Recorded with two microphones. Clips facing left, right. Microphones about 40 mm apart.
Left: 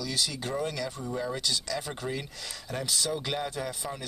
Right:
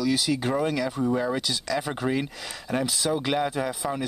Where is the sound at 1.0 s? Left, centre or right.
Right.